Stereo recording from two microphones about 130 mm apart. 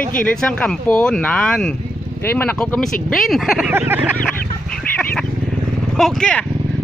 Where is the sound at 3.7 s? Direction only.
15° right (ahead or behind).